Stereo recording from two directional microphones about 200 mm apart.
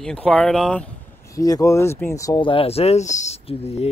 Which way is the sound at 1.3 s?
15° left (ahead or behind).